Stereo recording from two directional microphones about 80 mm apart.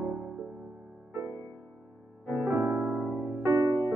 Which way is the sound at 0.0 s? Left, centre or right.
Centre.